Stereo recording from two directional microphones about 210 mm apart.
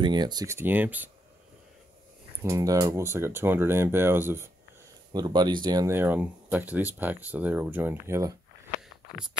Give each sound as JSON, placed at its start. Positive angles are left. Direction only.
{"t": 0.0, "sound": "speech", "side_deg": -20}
{"t": 2.4, "sound": "speech", "side_deg": -15}